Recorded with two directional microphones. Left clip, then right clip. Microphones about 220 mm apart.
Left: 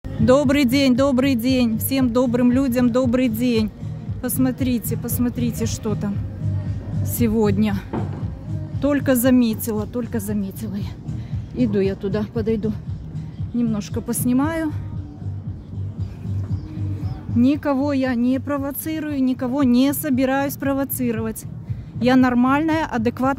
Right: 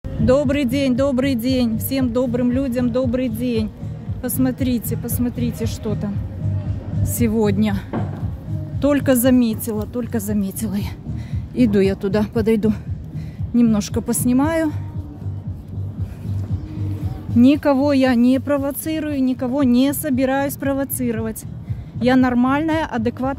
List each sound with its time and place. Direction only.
0.2 s speech: 15° left (ahead or behind)
4.2 s speech: 5° left (ahead or behind)
7.2 s speech: 5° left (ahead or behind)
8.8 s speech: 5° right (ahead or behind)
10.6 s speech: 15° right (ahead or behind)
17.4 s speech: 15° right (ahead or behind); by 23.3 s 10° left (ahead or behind)